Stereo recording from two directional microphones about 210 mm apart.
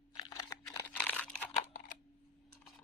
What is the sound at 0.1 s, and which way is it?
Crumpling, 20° left (ahead or behind).